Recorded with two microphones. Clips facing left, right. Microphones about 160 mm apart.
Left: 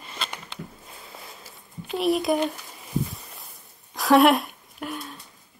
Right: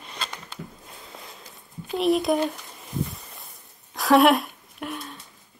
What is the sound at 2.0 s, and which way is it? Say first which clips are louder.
Speech: right 1 dB; centre (ahead or behind).